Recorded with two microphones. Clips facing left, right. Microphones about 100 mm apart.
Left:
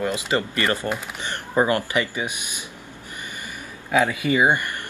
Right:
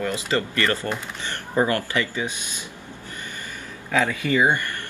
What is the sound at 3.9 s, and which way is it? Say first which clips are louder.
Speech: left 2 dB; 15° left (ahead or behind).